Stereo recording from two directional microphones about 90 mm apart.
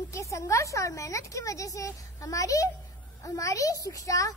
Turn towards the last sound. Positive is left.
turn(degrees=40)  # may be behind; listen again after turning